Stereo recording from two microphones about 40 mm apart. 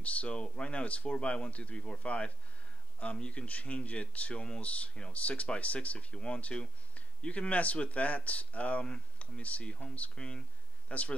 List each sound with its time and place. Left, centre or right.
0.0 s speech: left